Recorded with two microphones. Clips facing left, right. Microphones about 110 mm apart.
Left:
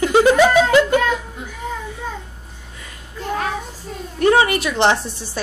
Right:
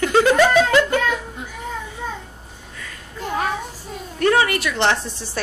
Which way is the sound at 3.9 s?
5° right (ahead or behind).